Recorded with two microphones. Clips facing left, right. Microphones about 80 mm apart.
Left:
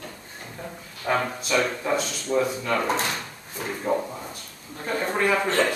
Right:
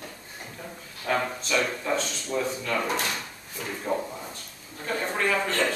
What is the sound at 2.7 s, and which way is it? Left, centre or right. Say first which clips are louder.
A man's voice: left 3 dB; left.